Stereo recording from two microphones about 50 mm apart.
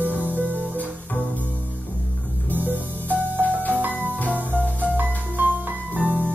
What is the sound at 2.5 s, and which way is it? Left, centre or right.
Music, right.